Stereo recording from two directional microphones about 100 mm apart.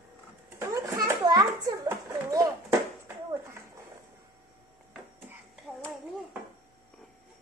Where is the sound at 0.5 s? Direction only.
30° right (ahead or behind).